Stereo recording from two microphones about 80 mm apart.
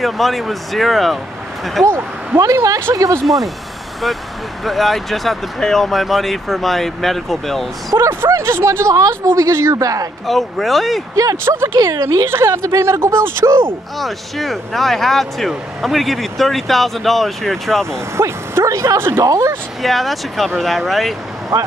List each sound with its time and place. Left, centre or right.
0.0 s speech: centre
1.9 s speech: right
2.4 s speech: right
4.6 s speech: centre
7.9 s speech: right
10.2 s speech: centre
11.4 s speech: right
11.8 s speech: right
13.9 s speech: centre
18.1 s speech: right
19.2 s speech: right
19.8 s speech: centre